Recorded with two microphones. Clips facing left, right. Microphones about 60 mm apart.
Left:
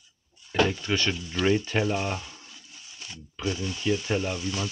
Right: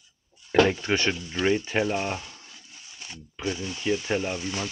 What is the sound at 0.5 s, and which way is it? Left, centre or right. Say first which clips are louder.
Speech: right 4 dB; right.